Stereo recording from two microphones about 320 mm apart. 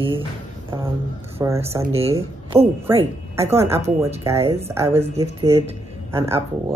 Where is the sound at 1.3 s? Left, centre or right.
Centre.